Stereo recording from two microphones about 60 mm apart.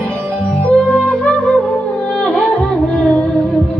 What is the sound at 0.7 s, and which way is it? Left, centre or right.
Music, left.